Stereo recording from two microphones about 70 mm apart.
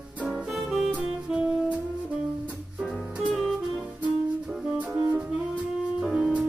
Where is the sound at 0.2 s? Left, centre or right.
Centre.